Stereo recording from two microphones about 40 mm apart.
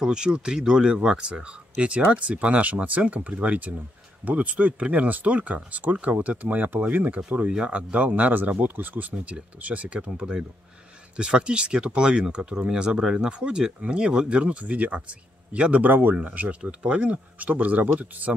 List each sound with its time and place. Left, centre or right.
0.0 s speech: right
7.2 s speech: right
15.8 s speech: right
16.2 s speech: right